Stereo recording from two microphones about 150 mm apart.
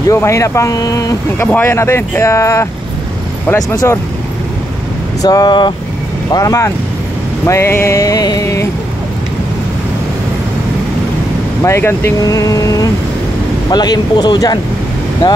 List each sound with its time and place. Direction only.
0.1 s speech: 20° left (ahead or behind)
3.7 s speech: 20° left (ahead or behind)
5.2 s speech: 25° left (ahead or behind)
7.4 s a sound: 15° left (ahead or behind)
11.6 s speech: 20° left (ahead or behind)